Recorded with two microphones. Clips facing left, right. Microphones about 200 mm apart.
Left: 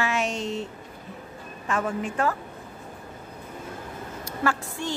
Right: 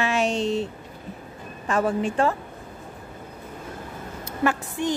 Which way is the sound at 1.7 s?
30° right (ahead or behind).